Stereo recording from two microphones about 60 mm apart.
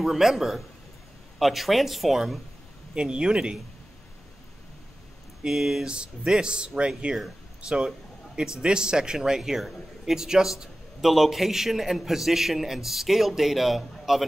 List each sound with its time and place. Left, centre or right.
0.0 s a man's voice: centre
2.9 s speech: centre
5.4 s a man's voice: centre